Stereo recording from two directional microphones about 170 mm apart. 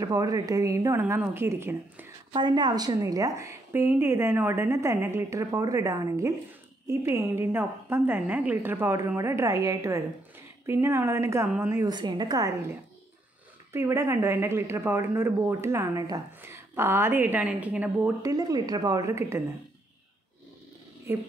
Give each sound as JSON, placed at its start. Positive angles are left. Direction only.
{"t": 0.0, "sound": "speech", "side_deg": -20}
{"t": 2.3, "sound": "speech", "side_deg": -25}
{"t": 13.7, "sound": "speech", "side_deg": -15}
{"t": 21.1, "sound": "speech", "side_deg": -15}